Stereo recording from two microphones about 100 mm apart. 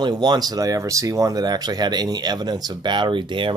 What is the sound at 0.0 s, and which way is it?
Speech, 45° right (ahead or behind).